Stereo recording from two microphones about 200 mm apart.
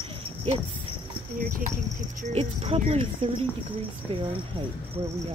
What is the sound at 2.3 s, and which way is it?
Speech, 30° right (ahead or behind).